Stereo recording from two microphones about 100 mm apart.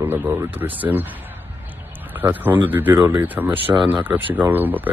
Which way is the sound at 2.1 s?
20° right (ahead or behind).